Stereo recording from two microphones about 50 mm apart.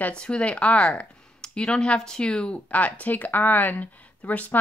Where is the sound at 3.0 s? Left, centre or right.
Left.